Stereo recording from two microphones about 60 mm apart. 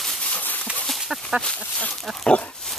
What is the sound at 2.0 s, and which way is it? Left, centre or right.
Pig, centre.